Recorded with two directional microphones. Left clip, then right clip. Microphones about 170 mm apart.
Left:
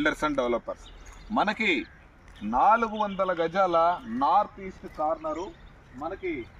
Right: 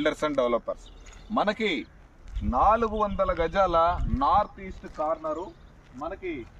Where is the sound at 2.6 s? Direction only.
50° right (ahead or behind).